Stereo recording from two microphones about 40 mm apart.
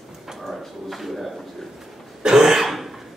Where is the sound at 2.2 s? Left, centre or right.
Centre.